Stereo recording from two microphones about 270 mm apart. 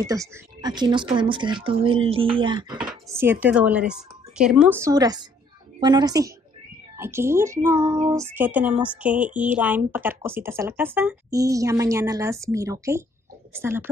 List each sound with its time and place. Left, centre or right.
0.0 s speech: centre
2.8 s speech: centre